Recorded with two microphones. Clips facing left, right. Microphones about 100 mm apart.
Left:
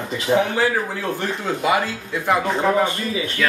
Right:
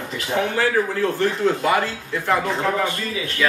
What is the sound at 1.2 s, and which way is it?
A man's voice, 15° left (ahead or behind).